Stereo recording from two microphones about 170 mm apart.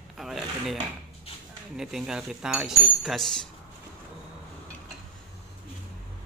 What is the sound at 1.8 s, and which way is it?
Speech, centre (ahead or behind).